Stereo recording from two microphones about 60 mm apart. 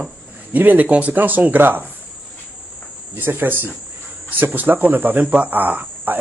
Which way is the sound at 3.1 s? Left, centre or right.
Right.